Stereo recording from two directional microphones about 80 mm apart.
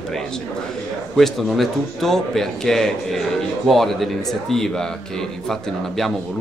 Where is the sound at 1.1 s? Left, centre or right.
Centre.